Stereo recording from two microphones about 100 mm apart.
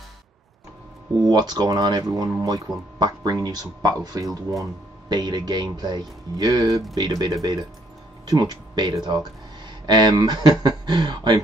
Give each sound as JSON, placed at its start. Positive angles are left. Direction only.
{"t": 1.2, "sound": "speech", "side_deg": -40}